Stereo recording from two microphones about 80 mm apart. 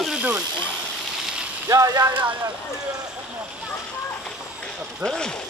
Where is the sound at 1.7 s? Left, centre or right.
Right.